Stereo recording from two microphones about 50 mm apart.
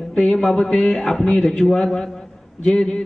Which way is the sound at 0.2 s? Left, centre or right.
Centre.